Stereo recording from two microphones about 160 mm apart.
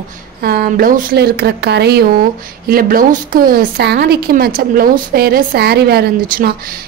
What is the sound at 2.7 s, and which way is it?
A woman's voice, 65° right (ahead or behind).